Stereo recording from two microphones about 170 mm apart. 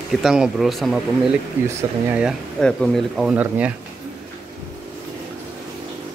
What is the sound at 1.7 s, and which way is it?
Speech, 15° right (ahead or behind).